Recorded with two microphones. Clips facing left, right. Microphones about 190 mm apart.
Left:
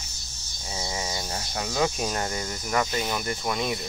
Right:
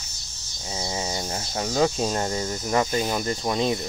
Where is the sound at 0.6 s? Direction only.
25° right (ahead or behind).